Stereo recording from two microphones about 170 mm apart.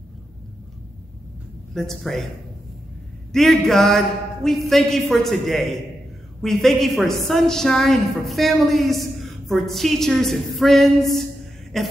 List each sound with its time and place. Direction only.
1.7 s a woman's voice: centre (ahead or behind)
3.3 s a woman's voice: centre (ahead or behind)